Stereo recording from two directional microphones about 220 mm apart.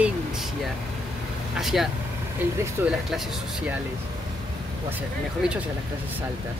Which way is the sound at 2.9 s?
Centre (ahead or behind).